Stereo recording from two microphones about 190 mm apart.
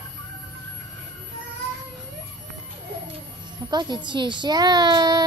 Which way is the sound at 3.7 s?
25° right (ahead or behind).